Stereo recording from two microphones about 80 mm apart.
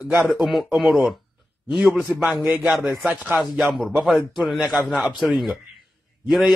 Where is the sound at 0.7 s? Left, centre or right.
Centre.